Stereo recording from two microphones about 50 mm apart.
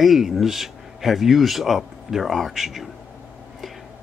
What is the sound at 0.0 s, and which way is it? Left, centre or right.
Speech, centre.